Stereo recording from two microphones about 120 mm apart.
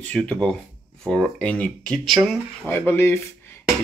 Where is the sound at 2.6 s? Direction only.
20° left (ahead or behind).